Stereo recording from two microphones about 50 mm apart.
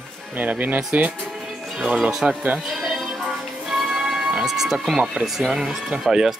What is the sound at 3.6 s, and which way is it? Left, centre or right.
Music, centre.